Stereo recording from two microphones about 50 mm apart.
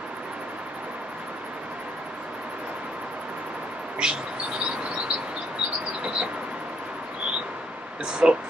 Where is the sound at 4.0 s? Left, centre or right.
Centre.